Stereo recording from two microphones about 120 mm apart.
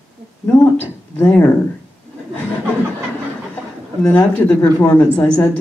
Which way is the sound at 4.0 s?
20° left (ahead or behind).